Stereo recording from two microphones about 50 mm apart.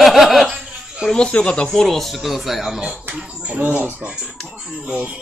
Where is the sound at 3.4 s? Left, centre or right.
Right.